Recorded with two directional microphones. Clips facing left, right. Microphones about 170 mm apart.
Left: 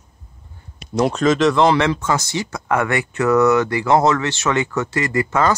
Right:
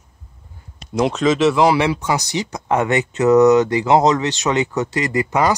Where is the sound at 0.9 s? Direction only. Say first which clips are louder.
Even; centre (ahead or behind).